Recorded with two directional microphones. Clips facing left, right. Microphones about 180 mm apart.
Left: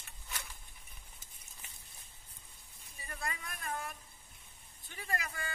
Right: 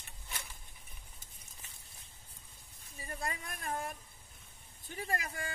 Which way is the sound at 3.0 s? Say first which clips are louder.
Right 2 dB; 30° right (ahead or behind).